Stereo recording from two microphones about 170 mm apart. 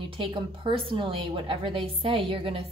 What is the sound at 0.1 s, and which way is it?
A woman's voice, 30° right (ahead or behind).